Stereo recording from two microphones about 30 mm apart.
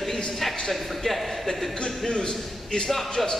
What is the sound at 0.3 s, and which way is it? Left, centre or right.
A man's voice, centre.